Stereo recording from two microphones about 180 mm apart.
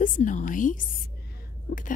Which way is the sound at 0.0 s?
45° left (ahead or behind).